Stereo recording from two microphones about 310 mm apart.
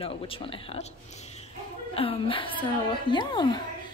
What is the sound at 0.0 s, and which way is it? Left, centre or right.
Speech, centre.